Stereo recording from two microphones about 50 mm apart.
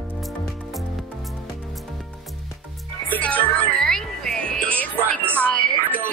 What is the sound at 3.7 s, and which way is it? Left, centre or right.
Music, centre.